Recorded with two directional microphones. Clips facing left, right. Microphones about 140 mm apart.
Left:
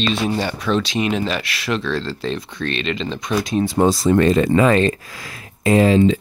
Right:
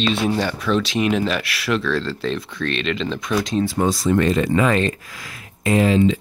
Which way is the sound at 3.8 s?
30° left (ahead or behind).